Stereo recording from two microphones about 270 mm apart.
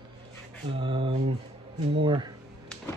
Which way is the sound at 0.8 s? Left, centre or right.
Centre.